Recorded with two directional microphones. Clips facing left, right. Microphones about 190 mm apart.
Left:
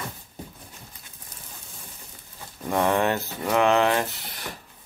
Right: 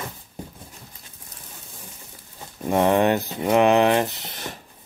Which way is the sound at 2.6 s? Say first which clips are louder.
Right 4 dB; 20° right (ahead or behind).